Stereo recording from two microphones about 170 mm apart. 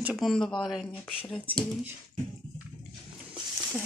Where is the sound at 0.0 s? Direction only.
5° right (ahead or behind).